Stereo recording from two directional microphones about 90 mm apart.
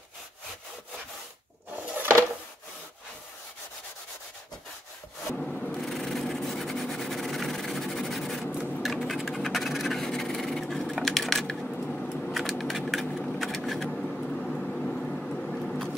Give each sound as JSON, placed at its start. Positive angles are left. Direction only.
{"t": 2.0, "sound": "drawer open or close", "side_deg": -25}
{"t": 5.3, "sound": "wood", "side_deg": 10}
{"t": 5.8, "sound": "a sound", "side_deg": 5}